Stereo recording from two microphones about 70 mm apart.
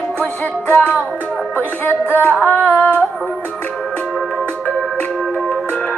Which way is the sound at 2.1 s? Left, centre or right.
Left.